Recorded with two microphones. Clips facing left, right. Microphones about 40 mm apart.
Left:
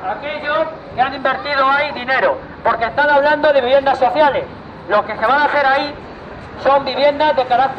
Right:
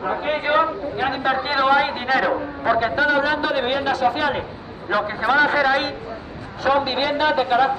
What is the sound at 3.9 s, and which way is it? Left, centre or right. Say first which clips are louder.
Speech: left 5 dB; left.